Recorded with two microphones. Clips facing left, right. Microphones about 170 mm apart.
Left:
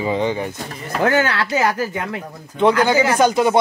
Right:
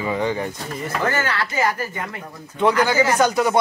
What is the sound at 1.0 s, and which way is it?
Speech, 65° left (ahead or behind).